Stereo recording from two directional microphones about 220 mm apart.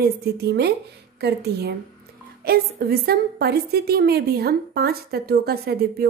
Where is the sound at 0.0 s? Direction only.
45° right (ahead or behind).